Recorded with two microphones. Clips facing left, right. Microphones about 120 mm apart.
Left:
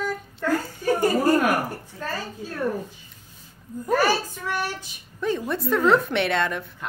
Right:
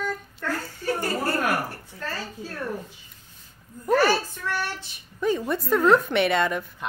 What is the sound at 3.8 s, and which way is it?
Speech, 10° left (ahead or behind).